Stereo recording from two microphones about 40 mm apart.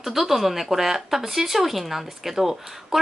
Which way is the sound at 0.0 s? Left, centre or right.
Centre.